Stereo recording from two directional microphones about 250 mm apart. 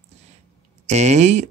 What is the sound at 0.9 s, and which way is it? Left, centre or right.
Speech, right.